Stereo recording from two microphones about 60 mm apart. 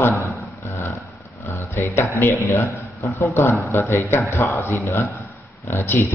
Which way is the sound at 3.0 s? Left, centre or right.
Left.